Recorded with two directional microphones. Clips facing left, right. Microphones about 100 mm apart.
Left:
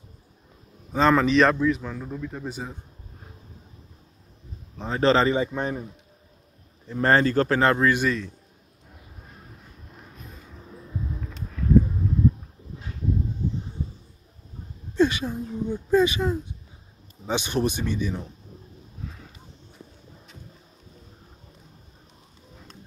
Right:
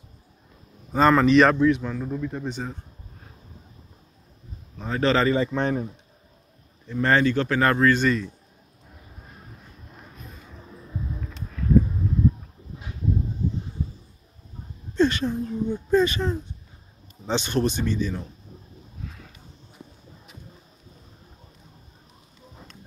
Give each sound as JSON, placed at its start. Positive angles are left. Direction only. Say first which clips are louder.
{"t": 0.9, "sound": "a man's voice", "louder": "right 2 dB", "side_deg": 0}
{"t": 4.7, "sound": "speech", "louder": "left 2 dB", "side_deg": 30}
{"t": 5.3, "sound": "speech", "louder": "right 2 dB", "side_deg": 10}
{"t": 6.9, "sound": "speech", "louder": "even", "side_deg": 35}
{"t": 7.6, "sound": "speech", "louder": "right 4 dB", "side_deg": 20}
{"t": 15.0, "sound": "speech", "louder": "right 1 dB", "side_deg": 10}